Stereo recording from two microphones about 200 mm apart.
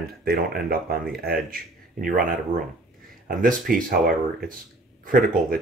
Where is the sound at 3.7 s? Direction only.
45° right (ahead or behind).